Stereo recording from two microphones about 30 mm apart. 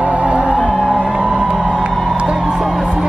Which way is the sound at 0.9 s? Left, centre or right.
Right.